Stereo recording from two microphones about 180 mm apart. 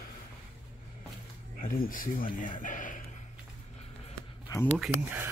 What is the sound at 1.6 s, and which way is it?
Speech, 55° left (ahead or behind).